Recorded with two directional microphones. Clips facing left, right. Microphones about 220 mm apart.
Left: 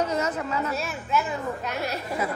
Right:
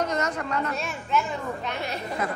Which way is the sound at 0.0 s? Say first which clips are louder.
Left 1 dB; 5° left (ahead or behind).